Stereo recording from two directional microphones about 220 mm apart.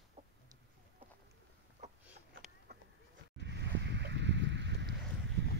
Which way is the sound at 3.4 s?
55° right (ahead or behind).